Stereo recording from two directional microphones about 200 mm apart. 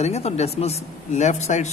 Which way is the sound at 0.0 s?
30° left (ahead or behind).